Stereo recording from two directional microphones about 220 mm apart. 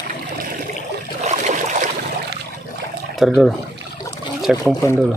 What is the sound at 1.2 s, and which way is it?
Boat, 30° right (ahead or behind).